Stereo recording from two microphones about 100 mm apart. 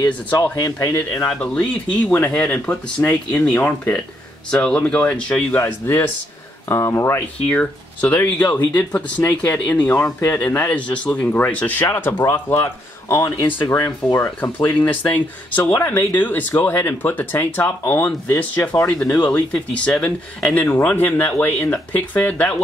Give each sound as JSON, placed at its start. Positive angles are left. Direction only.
{"t": 0.4, "sound": "speech", "side_deg": 30}
{"t": 0.9, "sound": "speech", "side_deg": 15}
{"t": 5.6, "sound": "speech", "side_deg": 25}
{"t": 7.4, "sound": "speech", "side_deg": 15}
{"t": 13.5, "sound": "speech", "side_deg": 25}
{"t": 18.9, "sound": "speech", "side_deg": 10}